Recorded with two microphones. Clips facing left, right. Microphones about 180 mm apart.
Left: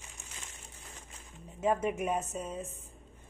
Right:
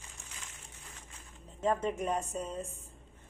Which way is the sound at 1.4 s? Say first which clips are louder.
Left 1 dB; 10° left (ahead or behind).